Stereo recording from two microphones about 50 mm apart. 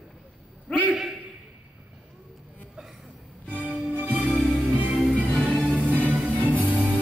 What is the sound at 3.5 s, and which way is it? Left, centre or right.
Music, right.